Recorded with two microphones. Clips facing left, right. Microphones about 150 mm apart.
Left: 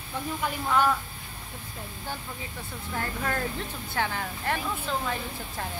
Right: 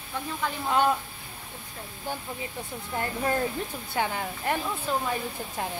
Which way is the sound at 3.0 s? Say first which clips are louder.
Right 3 dB; 20° right (ahead or behind).